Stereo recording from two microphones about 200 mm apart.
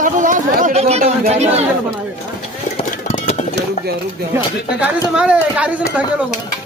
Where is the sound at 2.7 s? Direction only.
35° left (ahead or behind).